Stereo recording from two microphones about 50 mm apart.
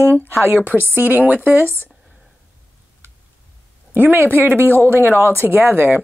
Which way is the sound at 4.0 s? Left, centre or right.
Right.